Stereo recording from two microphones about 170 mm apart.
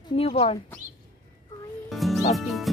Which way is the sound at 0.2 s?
35° left (ahead or behind).